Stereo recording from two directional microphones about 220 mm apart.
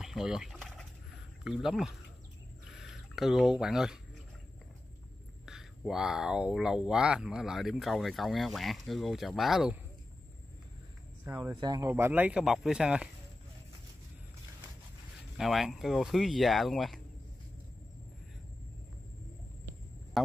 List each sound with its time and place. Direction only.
0.0 s liquid: centre (ahead or behind)
1.4 s speech: centre (ahead or behind)
5.4 s speech: centre (ahead or behind)
11.2 s speech: 10° right (ahead or behind)
15.3 s speech: centre (ahead or behind)
20.2 s speech: centre (ahead or behind)